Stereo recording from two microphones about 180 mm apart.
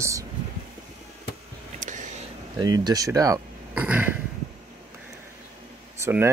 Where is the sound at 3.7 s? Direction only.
5° right (ahead or behind).